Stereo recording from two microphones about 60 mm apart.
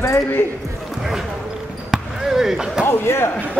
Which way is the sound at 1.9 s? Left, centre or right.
Centre.